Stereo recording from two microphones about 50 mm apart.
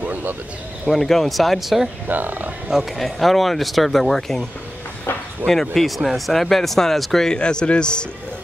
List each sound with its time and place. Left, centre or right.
0.0 s a sound: right
0.8 s speech: centre
2.0 s speech: right
2.7 s speech: centre
5.8 s speech: centre
7.3 s speech: centre